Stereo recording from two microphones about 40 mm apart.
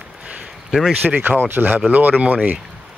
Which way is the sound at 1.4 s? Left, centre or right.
Right.